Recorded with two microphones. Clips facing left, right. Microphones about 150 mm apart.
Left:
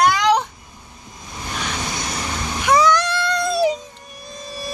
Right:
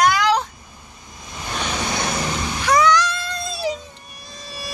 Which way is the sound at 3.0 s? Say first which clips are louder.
Left 3 dB; 65° left (ahead or behind).